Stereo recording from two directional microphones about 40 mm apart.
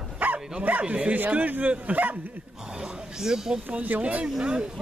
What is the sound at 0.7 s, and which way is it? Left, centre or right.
Speech, right.